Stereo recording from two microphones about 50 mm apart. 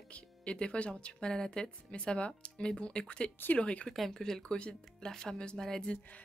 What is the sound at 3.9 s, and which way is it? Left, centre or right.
Speech, centre.